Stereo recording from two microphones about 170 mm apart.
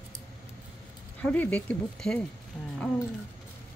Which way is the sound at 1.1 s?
10° left (ahead or behind).